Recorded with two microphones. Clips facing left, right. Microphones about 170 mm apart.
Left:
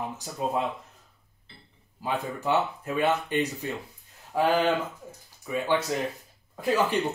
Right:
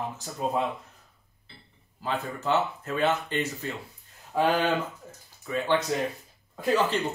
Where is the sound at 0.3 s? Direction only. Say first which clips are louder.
Left 1 dB; 10° left (ahead or behind).